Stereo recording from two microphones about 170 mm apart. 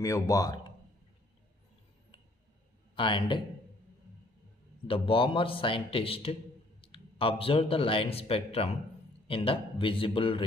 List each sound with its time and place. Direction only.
0.0 s speech: 20° left (ahead or behind)
3.0 s a man's voice: 30° left (ahead or behind)
4.8 s a man's voice: 30° left (ahead or behind)